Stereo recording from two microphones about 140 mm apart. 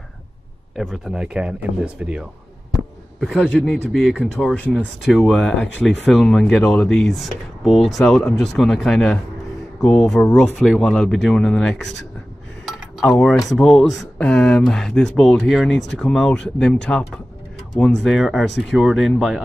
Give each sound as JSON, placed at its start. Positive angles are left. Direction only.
{"t": 0.7, "sound": "speech", "side_deg": 0}
{"t": 4.4, "sound": "speech", "side_deg": 10}
{"t": 12.6, "sound": "cutlery", "side_deg": 0}
{"t": 14.1, "sound": "speech", "side_deg": 5}